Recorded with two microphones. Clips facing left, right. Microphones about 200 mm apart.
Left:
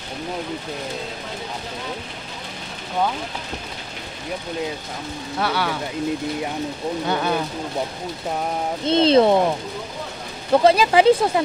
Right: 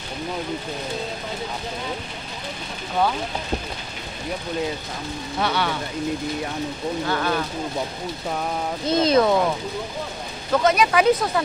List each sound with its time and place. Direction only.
5.4 s speech: 5° left (ahead or behind)
7.1 s speech: 20° left (ahead or behind)
8.8 s speech: 30° left (ahead or behind)
10.5 s speech: 30° left (ahead or behind)